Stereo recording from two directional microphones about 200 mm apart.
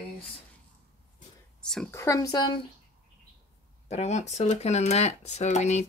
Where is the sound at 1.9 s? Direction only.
15° left (ahead or behind).